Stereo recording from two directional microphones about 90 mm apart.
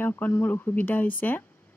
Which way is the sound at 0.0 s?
25° left (ahead or behind).